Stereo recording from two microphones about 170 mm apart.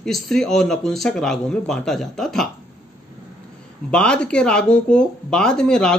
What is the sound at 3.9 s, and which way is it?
Speech, 5° left (ahead or behind).